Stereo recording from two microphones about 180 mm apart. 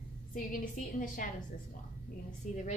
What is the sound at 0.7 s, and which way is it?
Speech, 45° left (ahead or behind).